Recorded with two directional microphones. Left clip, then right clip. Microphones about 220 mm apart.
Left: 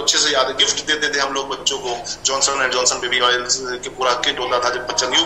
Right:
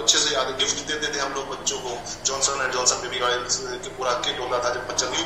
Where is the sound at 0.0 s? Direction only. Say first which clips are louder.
Left 5 dB; 35° left (ahead or behind).